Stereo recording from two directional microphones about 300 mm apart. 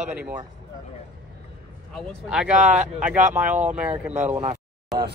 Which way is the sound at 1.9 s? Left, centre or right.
Centre.